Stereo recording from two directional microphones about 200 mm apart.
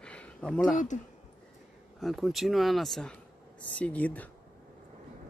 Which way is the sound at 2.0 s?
Centre (ahead or behind).